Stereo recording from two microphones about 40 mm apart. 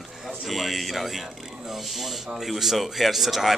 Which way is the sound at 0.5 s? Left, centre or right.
Centre.